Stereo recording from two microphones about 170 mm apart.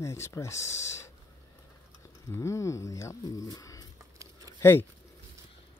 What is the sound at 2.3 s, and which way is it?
Speech, 15° left (ahead or behind).